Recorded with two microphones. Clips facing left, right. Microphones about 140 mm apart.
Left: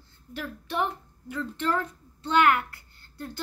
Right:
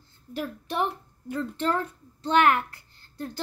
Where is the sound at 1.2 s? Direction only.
40° right (ahead or behind).